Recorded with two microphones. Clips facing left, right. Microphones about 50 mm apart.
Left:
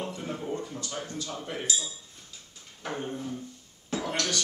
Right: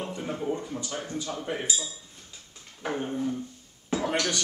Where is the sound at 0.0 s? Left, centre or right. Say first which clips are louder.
Right 3 dB; centre.